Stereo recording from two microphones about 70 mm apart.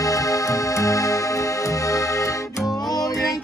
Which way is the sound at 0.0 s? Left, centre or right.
Left.